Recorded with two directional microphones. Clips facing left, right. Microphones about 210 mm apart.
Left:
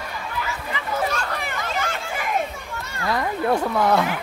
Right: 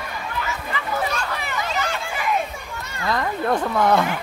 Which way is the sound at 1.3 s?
50° left (ahead or behind).